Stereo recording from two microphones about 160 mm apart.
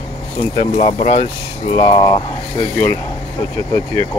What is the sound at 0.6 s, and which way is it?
Speech, 35° left (ahead or behind).